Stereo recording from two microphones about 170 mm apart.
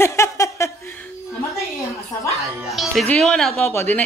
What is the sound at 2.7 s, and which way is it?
Music, centre (ahead or behind).